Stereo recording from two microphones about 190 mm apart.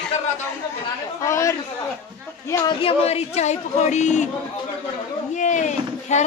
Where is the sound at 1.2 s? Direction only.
15° left (ahead or behind).